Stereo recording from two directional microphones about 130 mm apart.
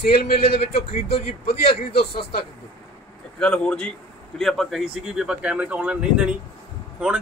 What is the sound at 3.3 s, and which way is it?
Speech, 10° left (ahead or behind).